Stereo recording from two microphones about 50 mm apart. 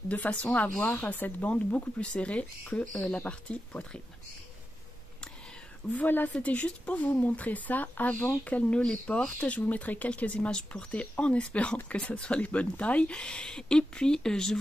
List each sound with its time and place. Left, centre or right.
0.1 s speech: left
2.8 s speech: centre
3.3 s speech: left
5.9 s speech: left; by 14.6 s centre